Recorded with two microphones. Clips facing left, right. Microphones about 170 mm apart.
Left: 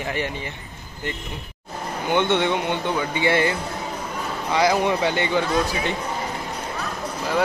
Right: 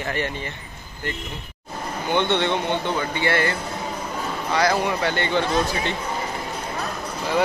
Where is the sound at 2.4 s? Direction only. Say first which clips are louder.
Even; 10° left (ahead or behind).